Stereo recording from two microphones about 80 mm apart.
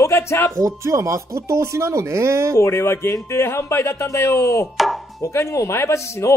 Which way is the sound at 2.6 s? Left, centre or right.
Left.